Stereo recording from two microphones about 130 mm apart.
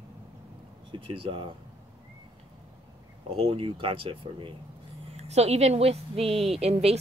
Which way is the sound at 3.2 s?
45° right (ahead or behind).